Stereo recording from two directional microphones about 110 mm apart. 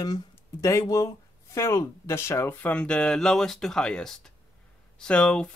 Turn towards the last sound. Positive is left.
turn(degrees=10)  # may be behind; listen again after turning